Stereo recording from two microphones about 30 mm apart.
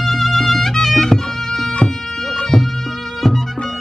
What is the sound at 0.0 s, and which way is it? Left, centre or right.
Music, centre.